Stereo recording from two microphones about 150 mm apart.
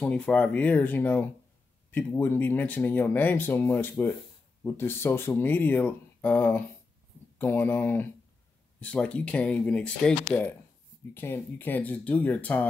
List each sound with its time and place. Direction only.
0.0 s speech: 10° left (ahead or behind)